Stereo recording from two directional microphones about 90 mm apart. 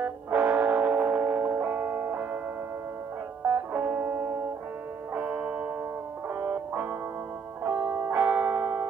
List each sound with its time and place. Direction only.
0.0 s music: 20° right (ahead or behind)
3.4 s music: 25° right (ahead or behind)